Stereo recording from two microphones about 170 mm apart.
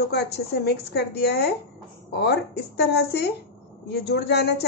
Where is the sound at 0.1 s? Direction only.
75° left (ahead or behind).